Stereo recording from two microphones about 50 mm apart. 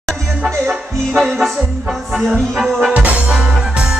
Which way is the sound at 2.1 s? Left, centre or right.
Centre.